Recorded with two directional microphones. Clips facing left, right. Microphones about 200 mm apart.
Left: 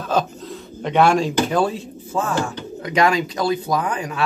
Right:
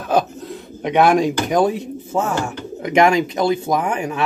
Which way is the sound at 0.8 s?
15° right (ahead or behind).